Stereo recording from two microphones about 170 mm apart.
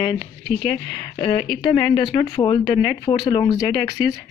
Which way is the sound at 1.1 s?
30° left (ahead or behind).